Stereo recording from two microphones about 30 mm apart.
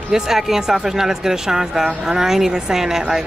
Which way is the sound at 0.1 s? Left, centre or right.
Centre.